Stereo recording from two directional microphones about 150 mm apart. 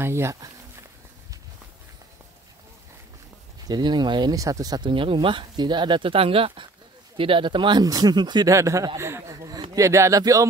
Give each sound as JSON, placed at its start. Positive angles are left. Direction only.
{"t": 0.0, "sound": "speech", "side_deg": -15}
{"t": 3.6, "sound": "speech", "side_deg": -30}